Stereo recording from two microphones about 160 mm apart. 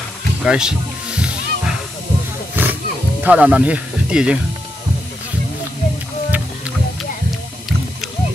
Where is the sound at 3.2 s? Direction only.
10° right (ahead or behind).